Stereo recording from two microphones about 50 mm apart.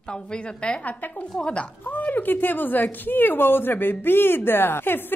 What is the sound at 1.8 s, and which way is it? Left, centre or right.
A woman's voice, left.